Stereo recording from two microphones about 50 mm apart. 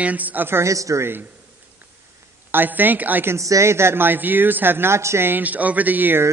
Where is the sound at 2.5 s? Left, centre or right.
Right.